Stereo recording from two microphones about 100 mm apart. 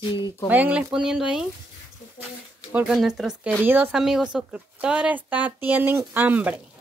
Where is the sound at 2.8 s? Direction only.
5° right (ahead or behind).